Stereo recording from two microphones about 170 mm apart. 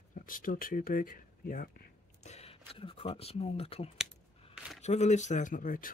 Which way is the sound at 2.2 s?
40° left (ahead or behind).